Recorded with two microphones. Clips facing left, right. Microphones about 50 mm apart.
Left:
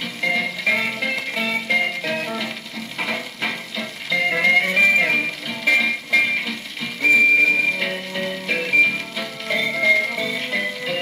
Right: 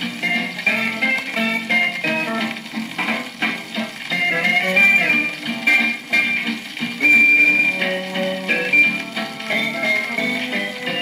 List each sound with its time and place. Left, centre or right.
0.0 s music: right